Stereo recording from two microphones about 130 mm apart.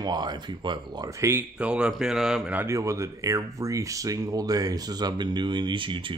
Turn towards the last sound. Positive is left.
turn(degrees=-40)  # may be behind; listen again after turning